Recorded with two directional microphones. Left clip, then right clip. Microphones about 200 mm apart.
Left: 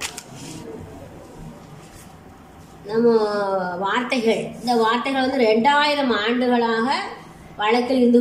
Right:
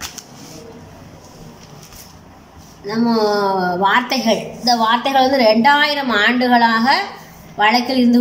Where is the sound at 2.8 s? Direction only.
35° right (ahead or behind).